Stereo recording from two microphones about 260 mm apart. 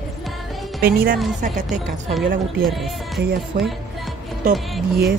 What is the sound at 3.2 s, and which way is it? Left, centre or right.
Speech, right.